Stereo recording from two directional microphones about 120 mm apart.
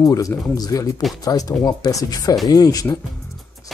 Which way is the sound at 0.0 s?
25° left (ahead or behind).